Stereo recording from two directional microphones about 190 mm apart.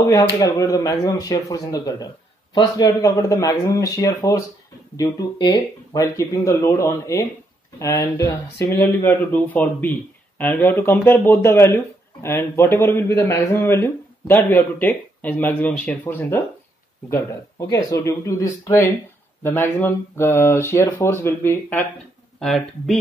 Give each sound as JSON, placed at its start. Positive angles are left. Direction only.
{"t": 0.0, "sound": "speech", "side_deg": 20}